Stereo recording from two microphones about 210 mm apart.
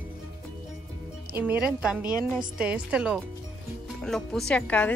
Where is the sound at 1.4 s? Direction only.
5° right (ahead or behind).